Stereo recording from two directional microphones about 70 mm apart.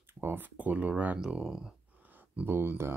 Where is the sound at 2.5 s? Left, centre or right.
Right.